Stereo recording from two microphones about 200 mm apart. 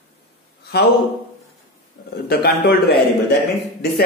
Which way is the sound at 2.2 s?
50° left (ahead or behind).